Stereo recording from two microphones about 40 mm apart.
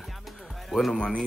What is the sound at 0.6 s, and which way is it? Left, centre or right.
Speech, centre.